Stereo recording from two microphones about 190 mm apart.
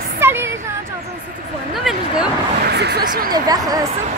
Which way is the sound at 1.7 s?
Centre (ahead or behind).